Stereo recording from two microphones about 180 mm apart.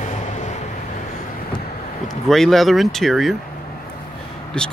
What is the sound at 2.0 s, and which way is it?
Speech, centre (ahead or behind).